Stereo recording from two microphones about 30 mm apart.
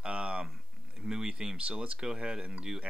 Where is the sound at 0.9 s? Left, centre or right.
Right.